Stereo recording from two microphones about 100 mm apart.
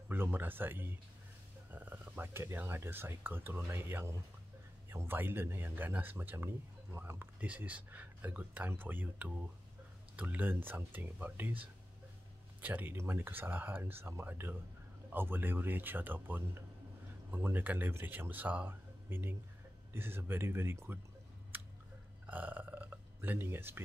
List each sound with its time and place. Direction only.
0.1 s speech: 20° right (ahead or behind)
12.6 s speech: 20° right (ahead or behind)
21.5 s chewing: 20° right (ahead or behind)
22.2 s burping: 15° right (ahead or behind)